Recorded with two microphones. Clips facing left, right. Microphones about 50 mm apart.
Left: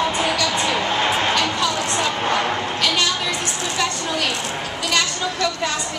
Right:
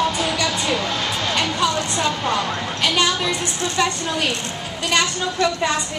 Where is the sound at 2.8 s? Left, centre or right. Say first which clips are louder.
Right 4 dB; centre.